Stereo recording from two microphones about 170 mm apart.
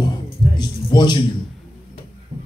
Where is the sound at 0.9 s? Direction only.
25° left (ahead or behind).